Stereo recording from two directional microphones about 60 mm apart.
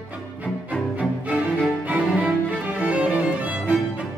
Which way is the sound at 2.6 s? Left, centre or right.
Right.